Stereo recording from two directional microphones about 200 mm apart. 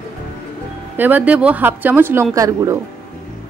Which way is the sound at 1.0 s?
10° right (ahead or behind).